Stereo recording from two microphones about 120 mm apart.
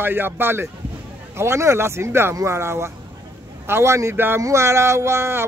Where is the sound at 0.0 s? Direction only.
20° right (ahead or behind).